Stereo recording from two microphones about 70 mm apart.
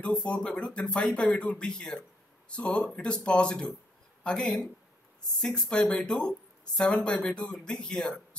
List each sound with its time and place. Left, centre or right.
0.0 s speech: centre